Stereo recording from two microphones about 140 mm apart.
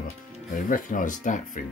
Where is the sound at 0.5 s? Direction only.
70° left (ahead or behind).